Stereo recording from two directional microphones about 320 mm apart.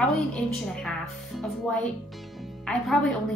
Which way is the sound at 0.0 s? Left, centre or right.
Centre.